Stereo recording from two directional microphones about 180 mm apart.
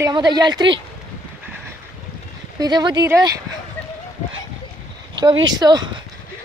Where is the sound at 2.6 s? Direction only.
25° right (ahead or behind).